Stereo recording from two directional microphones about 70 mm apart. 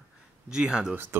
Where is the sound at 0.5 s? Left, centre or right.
Centre.